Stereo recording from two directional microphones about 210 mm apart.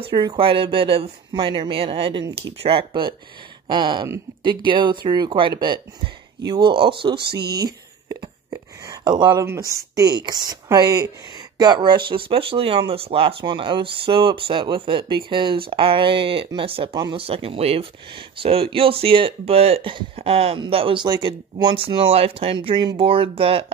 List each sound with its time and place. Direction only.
0.0 s speech: 20° right (ahead or behind)
7.2 s speech: 50° right (ahead or behind)
7.5 s speech: 20° right (ahead or behind)